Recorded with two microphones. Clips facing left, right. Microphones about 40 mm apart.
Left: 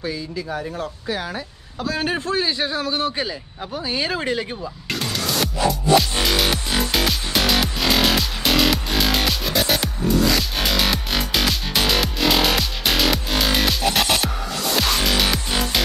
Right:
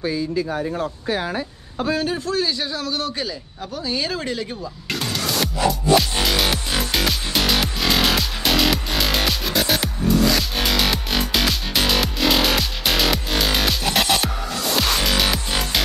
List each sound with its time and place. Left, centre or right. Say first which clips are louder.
0.0 s speech: right 5 dB; right
2.0 s a man's voice: even; left
4.9 s music: even; centre